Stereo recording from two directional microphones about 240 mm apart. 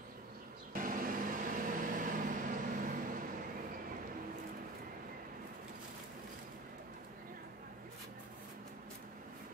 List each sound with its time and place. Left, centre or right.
0.7 s vehicle: right